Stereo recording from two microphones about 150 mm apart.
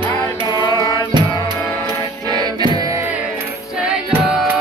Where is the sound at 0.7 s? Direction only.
25° right (ahead or behind).